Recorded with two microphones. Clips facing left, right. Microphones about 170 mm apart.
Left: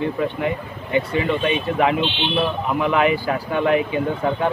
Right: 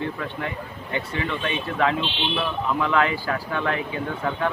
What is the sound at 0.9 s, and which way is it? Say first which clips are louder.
Speech: left 8 dB; 15° left (ahead or behind).